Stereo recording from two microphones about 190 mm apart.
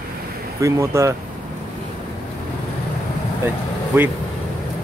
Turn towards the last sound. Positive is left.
turn(degrees=-10)  # may be behind; listen again after turning